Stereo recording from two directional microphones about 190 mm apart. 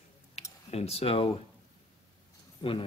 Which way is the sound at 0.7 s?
35° left (ahead or behind).